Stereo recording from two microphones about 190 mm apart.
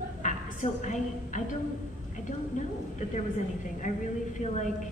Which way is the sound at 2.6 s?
40° left (ahead or behind).